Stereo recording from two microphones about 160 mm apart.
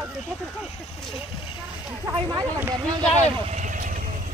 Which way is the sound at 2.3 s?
20° right (ahead or behind).